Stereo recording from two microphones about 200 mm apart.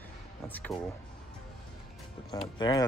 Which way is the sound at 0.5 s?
10° left (ahead or behind).